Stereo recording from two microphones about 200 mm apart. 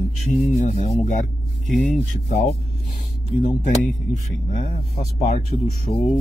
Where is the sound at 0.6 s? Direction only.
35° left (ahead or behind).